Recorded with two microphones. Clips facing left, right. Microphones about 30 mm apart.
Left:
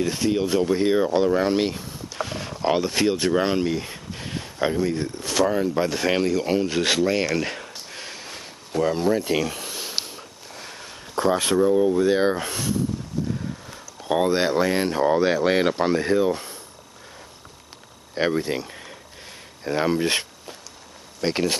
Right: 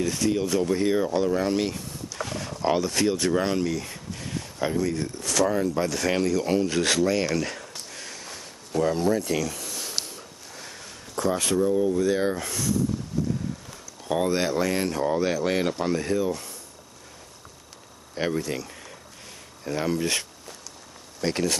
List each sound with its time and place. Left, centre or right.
0.0 s speech: left
7.3 s a sound: left
13.7 s speech: left
18.1 s speech: left
19.6 s speech: left